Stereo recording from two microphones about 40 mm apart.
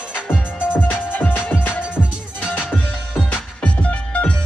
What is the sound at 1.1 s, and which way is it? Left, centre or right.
Music, left.